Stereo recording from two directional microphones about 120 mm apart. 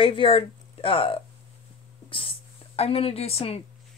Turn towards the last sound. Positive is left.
turn(degrees=55)  # may be behind; listen again after turning